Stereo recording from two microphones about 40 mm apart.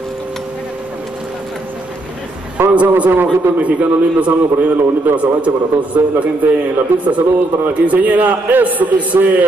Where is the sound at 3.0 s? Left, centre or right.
Right.